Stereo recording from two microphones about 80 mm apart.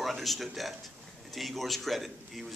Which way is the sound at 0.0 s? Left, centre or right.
Centre.